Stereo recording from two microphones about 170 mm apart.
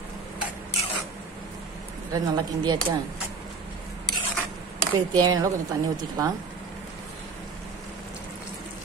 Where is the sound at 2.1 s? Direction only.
25° right (ahead or behind).